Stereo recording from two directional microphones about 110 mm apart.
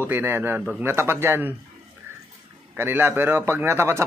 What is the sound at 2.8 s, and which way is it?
A man's voice, 20° right (ahead or behind).